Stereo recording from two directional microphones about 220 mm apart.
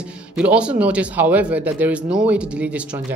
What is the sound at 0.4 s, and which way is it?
A man's voice, 5° right (ahead or behind).